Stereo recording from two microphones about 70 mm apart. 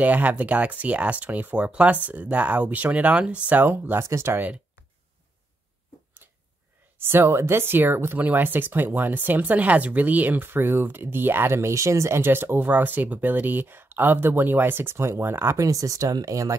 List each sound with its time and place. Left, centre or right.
0.0 s speech: right
4.0 s speech: right
7.0 s speech: right
12.2 s speech: right
15.5 s speech: right